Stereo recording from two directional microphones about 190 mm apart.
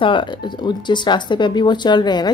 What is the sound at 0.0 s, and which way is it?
Speech, 25° left (ahead or behind).